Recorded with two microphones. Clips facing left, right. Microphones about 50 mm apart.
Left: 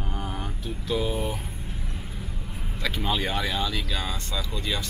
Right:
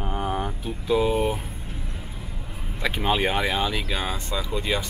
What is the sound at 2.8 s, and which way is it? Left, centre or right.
Speech, right.